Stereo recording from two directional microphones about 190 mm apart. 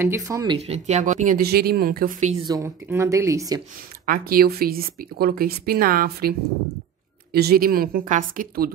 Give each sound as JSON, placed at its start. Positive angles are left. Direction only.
{"t": 0.0, "sound": "speech", "side_deg": -15}
{"t": 0.6, "sound": "speech", "side_deg": -35}
{"t": 2.4, "sound": "speech", "side_deg": -15}
{"t": 4.0, "sound": "speech", "side_deg": -50}
{"t": 7.3, "sound": "speech", "side_deg": -55}